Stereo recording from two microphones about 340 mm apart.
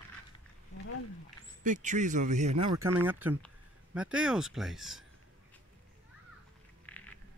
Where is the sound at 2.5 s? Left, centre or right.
Right.